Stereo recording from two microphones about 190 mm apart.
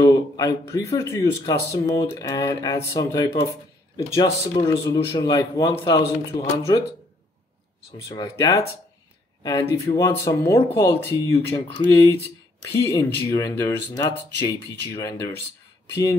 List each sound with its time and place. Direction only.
0.0 s speech: 20° left (ahead or behind)
8.1 s speech: 20° left (ahead or behind)